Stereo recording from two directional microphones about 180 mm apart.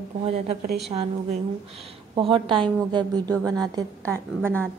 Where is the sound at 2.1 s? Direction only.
30° right (ahead or behind).